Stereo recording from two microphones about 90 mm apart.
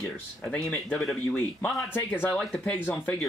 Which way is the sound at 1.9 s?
20° left (ahead or behind).